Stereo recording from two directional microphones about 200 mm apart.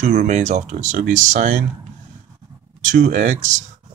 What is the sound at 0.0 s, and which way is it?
Speech, 35° right (ahead or behind).